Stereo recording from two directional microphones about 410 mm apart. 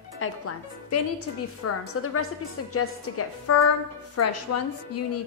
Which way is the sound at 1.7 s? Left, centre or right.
Left.